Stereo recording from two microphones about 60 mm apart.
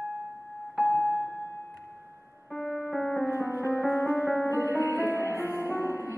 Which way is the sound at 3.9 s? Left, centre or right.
Left.